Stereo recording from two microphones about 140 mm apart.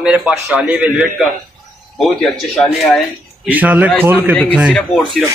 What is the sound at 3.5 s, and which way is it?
A man's voice, 10° right (ahead or behind).